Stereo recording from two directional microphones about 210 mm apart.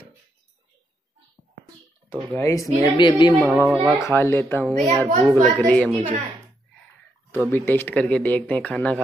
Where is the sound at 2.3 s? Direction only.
15° left (ahead or behind).